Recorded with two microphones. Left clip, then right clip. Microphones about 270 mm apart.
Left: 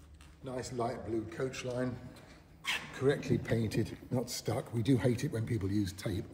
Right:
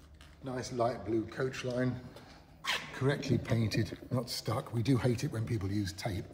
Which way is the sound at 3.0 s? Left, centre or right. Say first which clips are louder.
Left 2 dB; right.